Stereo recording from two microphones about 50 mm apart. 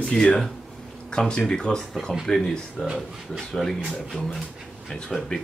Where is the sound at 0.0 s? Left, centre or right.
Centre.